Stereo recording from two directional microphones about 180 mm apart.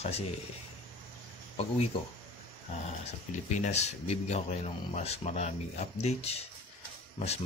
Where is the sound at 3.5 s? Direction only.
40° left (ahead or behind).